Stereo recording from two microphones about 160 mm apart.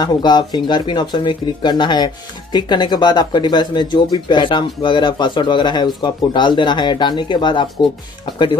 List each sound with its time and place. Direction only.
0.0 s speech: 25° left (ahead or behind)